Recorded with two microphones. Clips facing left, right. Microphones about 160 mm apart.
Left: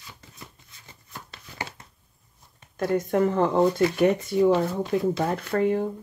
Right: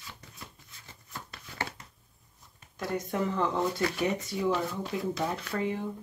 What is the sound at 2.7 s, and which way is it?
Speech, 50° left (ahead or behind).